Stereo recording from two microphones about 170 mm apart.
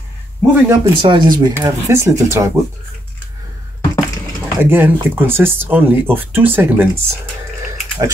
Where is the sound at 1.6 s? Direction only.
15° right (ahead or behind).